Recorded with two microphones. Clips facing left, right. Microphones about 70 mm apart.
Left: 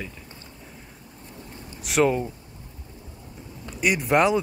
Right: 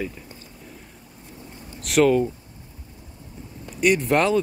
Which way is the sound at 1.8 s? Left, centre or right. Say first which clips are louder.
Right 3 dB; centre.